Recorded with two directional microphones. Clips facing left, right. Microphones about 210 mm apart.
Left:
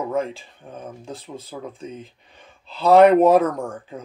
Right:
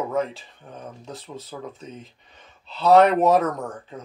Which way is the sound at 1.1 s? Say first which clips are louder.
Even; 30° left (ahead or behind).